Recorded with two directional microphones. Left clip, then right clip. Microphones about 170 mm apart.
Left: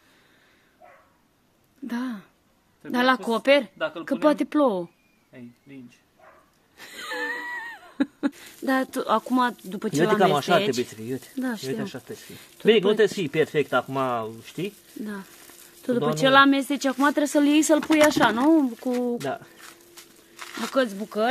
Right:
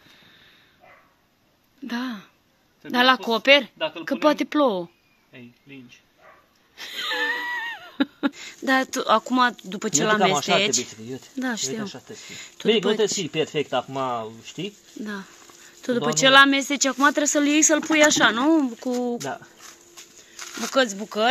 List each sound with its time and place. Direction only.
1.9 s speech: 5° left (ahead or behind)
6.8 s wheeze: 5° left (ahead or behind)
10.2 s speech: 40° left (ahead or behind)
10.6 s speech: 5° left (ahead or behind)
12.9 s speech: 30° left (ahead or behind)
16.1 s speech: 5° left (ahead or behind)
17.3 s speech: 20° left (ahead or behind)